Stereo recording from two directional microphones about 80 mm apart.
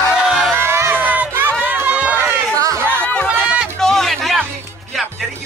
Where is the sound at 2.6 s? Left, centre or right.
Right.